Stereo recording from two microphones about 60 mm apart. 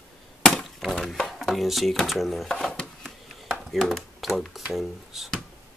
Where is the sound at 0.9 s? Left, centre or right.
Centre.